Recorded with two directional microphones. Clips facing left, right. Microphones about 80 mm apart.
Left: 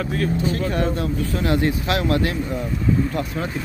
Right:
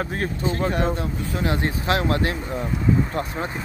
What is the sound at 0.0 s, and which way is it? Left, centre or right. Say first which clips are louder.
Speech: left 3 dB; right.